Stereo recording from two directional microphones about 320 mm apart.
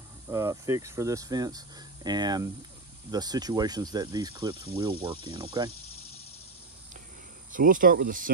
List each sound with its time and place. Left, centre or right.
0.3 s speech: centre
7.5 s speech: right